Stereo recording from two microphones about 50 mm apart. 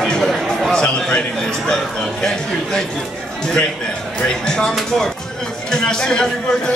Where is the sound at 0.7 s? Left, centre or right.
Centre.